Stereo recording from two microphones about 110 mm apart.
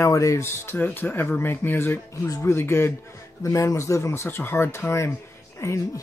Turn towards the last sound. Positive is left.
turn(degrees=30)  # may be behind; listen again after turning